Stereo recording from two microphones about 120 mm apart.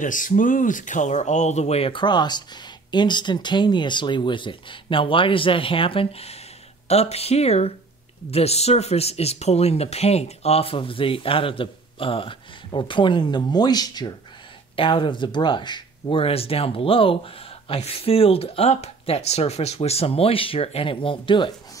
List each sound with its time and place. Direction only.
0.0 s speech: 90° left; by 21.5 s 45° left (ahead or behind)